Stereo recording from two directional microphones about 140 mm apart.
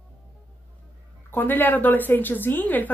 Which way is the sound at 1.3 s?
15° left (ahead or behind).